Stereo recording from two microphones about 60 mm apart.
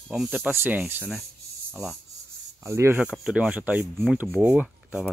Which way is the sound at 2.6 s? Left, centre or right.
Right.